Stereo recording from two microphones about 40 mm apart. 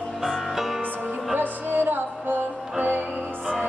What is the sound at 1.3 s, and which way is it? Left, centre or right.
Music, right.